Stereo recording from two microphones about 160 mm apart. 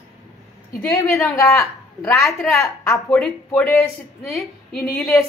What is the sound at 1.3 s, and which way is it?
Speech, 20° left (ahead or behind).